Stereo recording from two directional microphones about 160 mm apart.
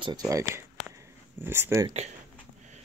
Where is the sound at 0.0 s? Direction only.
25° right (ahead or behind).